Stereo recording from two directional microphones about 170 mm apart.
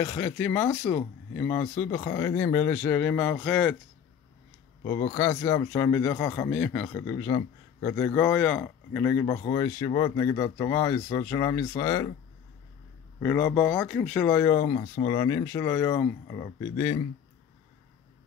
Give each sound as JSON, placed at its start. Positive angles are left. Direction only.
{"t": 0.0, "sound": "speech", "side_deg": 20}
{"t": 4.8, "sound": "speech", "side_deg": 25}
{"t": 13.2, "sound": "speech", "side_deg": 10}